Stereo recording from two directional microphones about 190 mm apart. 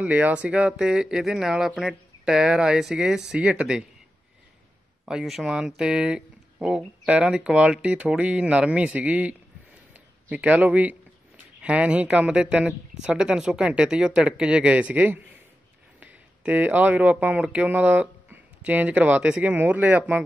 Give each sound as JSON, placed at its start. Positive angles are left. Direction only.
{"t": 0.0, "sound": "speech", "side_deg": -10}
{"t": 5.0, "sound": "speech", "side_deg": 0}